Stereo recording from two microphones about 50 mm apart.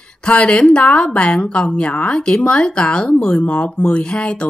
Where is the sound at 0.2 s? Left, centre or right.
Left.